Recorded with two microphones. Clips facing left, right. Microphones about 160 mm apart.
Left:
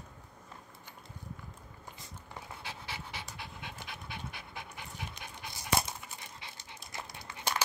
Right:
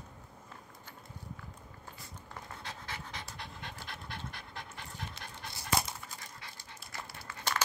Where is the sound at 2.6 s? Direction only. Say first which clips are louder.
Even; 10° left (ahead or behind).